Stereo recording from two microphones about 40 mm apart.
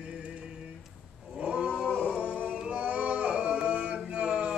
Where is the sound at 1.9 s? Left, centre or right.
Left.